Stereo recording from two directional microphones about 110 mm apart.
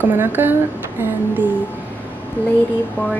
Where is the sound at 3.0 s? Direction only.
20° left (ahead or behind).